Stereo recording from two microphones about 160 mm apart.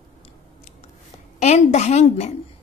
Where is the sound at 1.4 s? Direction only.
45° left (ahead or behind).